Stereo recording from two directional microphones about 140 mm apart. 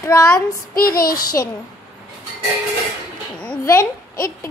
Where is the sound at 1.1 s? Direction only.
25° left (ahead or behind).